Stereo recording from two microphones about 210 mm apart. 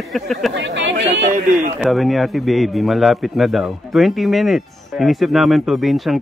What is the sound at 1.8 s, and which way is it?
A man's voice, centre (ahead or behind).